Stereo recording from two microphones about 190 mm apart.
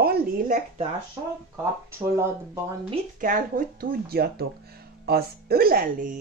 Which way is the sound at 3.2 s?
45° right (ahead or behind).